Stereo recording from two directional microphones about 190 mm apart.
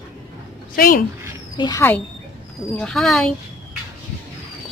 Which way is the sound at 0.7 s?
50° left (ahead or behind).